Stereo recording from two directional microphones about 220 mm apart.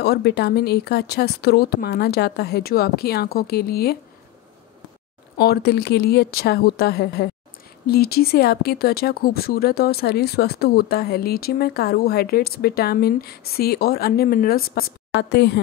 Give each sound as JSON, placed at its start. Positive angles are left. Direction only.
{"t": 0.0, "sound": "speech", "side_deg": 45}
{"t": 5.4, "sound": "speech", "side_deg": 45}